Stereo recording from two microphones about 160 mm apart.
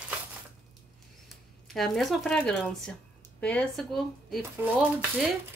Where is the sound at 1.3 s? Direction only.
Centre (ahead or behind).